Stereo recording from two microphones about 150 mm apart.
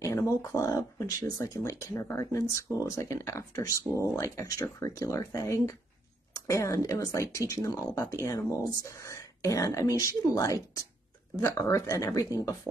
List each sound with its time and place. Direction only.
0.0 s speech: 20° left (ahead or behind)